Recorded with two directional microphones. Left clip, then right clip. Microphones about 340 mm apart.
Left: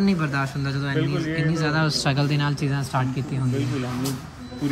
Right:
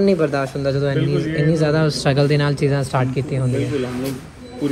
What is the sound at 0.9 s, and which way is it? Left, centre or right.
Speech, left.